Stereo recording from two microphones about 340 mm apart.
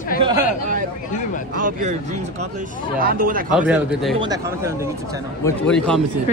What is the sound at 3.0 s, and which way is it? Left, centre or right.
Speech, right.